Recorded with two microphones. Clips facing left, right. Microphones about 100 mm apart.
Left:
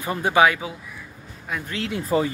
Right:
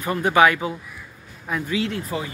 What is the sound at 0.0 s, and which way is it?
Speech, 20° left (ahead or behind).